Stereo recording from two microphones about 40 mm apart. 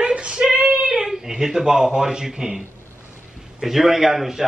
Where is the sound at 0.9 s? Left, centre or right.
Centre.